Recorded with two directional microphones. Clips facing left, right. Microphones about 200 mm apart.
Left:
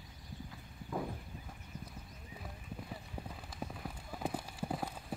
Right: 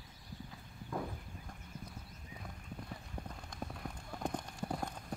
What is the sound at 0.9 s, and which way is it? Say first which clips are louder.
Horse: left 1 dB; 5° left (ahead or behind).